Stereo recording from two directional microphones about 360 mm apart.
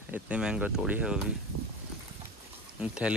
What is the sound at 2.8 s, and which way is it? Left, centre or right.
Speech, centre.